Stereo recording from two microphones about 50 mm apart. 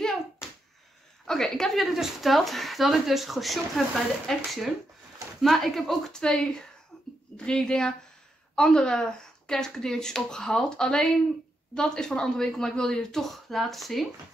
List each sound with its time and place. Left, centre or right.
0.4 s finger snapping: centre
1.2 s speech: centre
5.4 s speech: centre
6.1 s speech: centre